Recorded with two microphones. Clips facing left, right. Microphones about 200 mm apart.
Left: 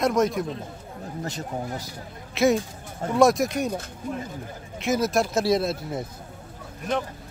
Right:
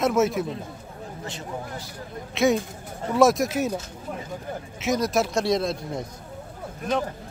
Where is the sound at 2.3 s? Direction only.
Centre (ahead or behind).